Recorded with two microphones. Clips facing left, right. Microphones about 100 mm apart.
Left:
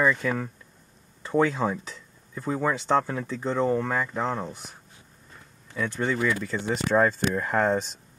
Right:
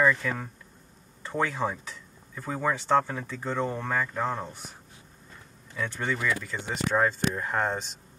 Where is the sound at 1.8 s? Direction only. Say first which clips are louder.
Left 1 dB; 25° left (ahead or behind).